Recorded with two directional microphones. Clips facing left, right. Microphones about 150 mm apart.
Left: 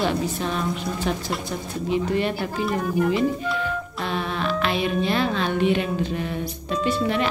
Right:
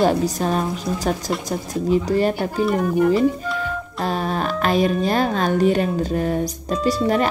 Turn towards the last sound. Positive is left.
turn(degrees=-40)  # may be behind; listen again after turning